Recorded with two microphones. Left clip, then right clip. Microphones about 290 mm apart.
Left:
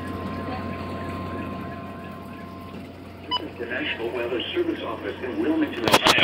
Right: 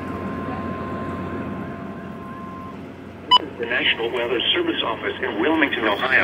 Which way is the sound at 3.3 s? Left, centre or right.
Right.